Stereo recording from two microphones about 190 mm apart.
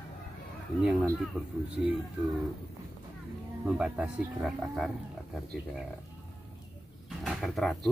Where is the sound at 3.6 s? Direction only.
5° right (ahead or behind).